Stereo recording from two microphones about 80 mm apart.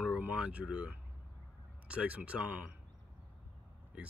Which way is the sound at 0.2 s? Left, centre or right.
Centre.